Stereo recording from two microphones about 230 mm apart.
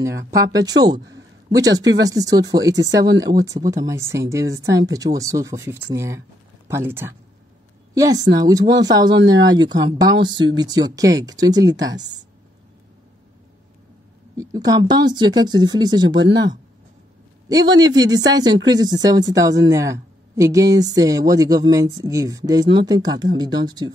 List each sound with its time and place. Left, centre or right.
0.0 s speech: centre
14.3 s speech: centre
17.5 s speech: centre